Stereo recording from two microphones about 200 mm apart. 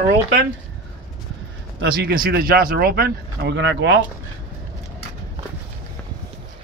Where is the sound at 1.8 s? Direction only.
50° right (ahead or behind).